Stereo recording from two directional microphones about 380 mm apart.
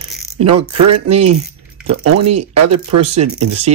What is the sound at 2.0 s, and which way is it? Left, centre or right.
Speech, right.